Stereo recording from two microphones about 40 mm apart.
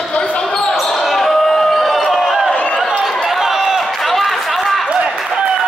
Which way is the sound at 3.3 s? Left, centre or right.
Centre.